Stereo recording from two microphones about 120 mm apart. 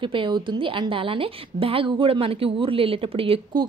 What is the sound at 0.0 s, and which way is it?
A woman's voice, 45° right (ahead or behind).